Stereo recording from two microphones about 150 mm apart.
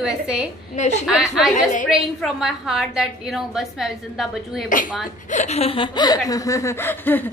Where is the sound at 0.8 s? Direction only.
50° left (ahead or behind).